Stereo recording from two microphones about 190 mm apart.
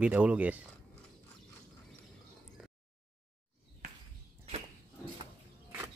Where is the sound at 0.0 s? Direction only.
5° right (ahead or behind).